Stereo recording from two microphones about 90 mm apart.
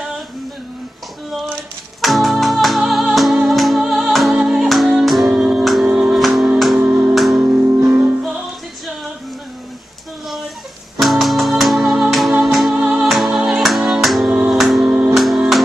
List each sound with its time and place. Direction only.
1.5 s music: centre (ahead or behind)
5.9 s music: 10° right (ahead or behind)
6.1 s music: centre (ahead or behind)
7.4 s music: 20° right (ahead or behind)
11.0 s music: centre (ahead or behind)
12.7 s music: 20° right (ahead or behind)
13.0 s music: centre (ahead or behind)
14.3 s music: 15° right (ahead or behind)
14.6 s music: centre (ahead or behind)